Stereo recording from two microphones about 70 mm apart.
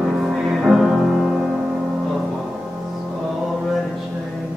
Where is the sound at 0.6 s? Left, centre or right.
Centre.